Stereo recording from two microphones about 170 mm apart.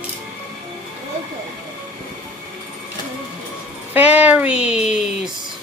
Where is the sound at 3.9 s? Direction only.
10° right (ahead or behind).